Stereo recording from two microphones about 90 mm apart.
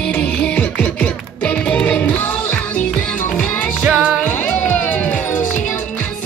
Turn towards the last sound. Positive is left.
turn(degrees=20)  # may be behind; listen again after turning